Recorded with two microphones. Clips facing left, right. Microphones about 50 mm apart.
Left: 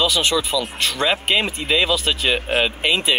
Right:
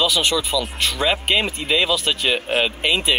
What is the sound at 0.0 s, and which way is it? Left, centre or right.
Speech, centre.